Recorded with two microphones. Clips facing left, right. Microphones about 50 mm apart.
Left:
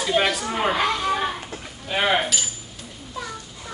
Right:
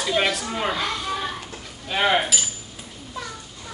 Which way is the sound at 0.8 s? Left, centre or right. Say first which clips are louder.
Left 5 dB; left.